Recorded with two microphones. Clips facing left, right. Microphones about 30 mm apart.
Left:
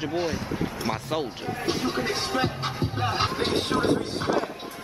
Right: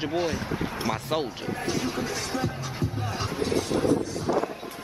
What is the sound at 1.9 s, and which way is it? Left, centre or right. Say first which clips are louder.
Speech: left 3 dB; left.